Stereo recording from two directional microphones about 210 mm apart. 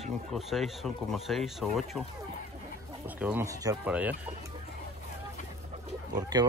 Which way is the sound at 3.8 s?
5° right (ahead or behind).